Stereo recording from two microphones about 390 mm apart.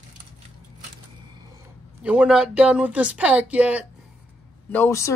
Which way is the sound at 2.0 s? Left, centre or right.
Centre.